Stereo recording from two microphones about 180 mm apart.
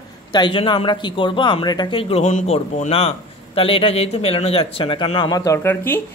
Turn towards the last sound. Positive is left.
turn(degrees=10)  # may be behind; listen again after turning